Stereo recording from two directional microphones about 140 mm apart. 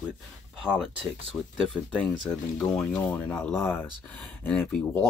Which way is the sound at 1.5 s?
5° left (ahead or behind).